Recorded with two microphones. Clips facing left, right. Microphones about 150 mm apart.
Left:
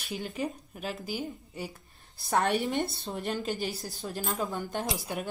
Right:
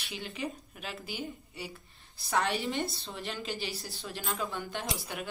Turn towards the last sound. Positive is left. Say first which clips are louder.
# left 4 dB
turn(degrees=45)  # may be behind; listen again after turning